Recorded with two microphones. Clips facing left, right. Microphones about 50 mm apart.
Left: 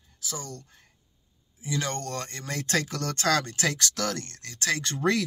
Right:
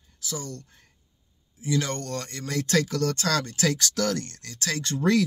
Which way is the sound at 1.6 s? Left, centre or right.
Left.